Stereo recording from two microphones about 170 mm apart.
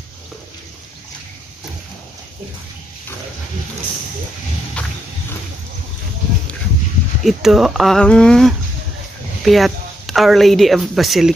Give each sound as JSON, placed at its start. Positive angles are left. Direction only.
{"t": 4.8, "sound": "walk", "side_deg": 5}
{"t": 7.2, "sound": "a woman's voice", "side_deg": 0}